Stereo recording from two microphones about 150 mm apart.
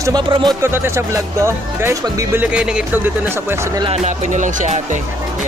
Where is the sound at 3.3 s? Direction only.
15° right (ahead or behind).